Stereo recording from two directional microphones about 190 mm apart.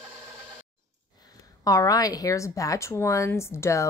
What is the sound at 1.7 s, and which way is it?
Speech, 20° left (ahead or behind).